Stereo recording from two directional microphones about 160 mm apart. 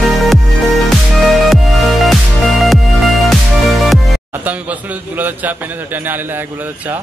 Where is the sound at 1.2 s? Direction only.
Centre (ahead or behind).